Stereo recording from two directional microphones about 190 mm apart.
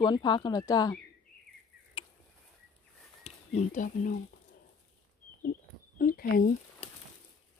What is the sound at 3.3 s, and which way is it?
Speech, 40° left (ahead or behind).